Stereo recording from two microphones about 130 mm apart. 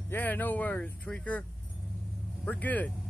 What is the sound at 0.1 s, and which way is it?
Speech, 15° left (ahead or behind).